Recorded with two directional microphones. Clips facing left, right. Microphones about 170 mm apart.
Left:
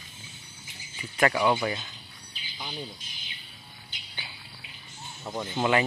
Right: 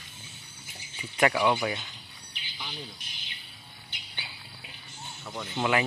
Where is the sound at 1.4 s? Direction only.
Centre (ahead or behind).